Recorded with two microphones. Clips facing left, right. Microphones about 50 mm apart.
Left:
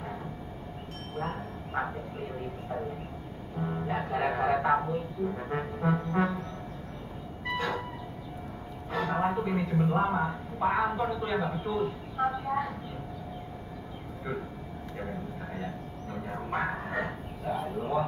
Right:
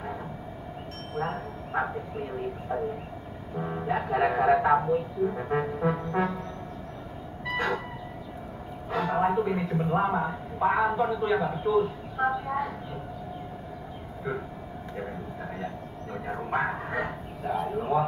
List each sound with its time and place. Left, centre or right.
1.1 s speech: centre
3.5 s speech: right
7.5 s vehicle: right
8.9 s a man's voice: centre
15.6 s bow-wow: centre